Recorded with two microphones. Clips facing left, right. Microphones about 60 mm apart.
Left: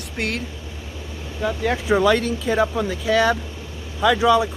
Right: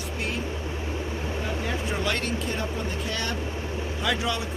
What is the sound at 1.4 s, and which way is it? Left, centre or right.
Speech, left.